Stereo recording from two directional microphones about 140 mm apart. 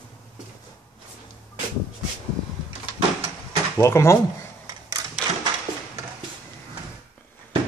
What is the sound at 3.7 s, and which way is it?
Speech, 20° left (ahead or behind).